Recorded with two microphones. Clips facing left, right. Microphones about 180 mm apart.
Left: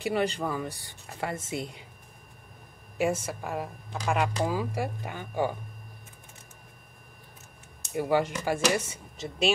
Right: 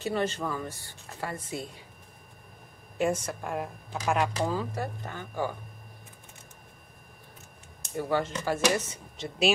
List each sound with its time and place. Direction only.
0.0 s speech: 15° left (ahead or behind)
3.0 s a woman's voice: 5° left (ahead or behind)
4.4 s speech: 10° left (ahead or behind)
7.9 s speech: 10° left (ahead or behind)